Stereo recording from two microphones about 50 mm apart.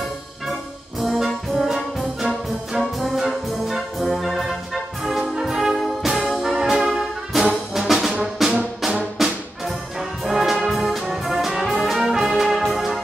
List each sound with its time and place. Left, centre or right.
1.0 s brass instrument: centre
8.4 s music: centre
9.2 s brass instrument: centre